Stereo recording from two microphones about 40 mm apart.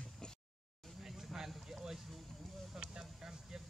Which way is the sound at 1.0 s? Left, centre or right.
Centre.